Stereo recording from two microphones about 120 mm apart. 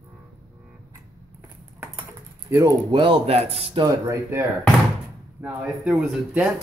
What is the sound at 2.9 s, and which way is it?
Speech, 45° right (ahead or behind).